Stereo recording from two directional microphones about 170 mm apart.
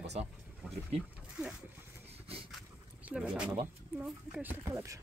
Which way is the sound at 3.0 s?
5° right (ahead or behind).